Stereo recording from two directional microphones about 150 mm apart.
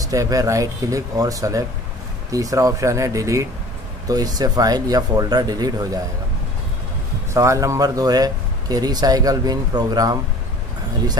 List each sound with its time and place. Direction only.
0.0 s speech: 20° right (ahead or behind)
7.3 s speech: 20° right (ahead or behind)